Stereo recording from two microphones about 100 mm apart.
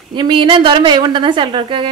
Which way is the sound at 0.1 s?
50° right (ahead or behind).